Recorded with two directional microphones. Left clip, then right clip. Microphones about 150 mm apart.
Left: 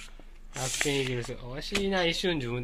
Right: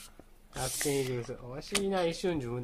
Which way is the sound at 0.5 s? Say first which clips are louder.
Left 3 dB; centre (ahead or behind).